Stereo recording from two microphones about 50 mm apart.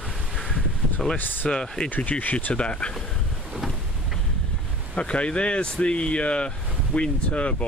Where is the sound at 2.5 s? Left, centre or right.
Centre.